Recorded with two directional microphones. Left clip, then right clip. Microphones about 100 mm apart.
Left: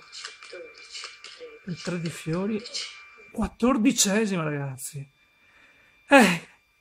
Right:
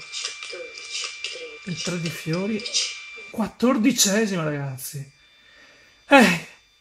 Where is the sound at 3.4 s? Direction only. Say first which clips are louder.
Right 2 dB; 35° left (ahead or behind).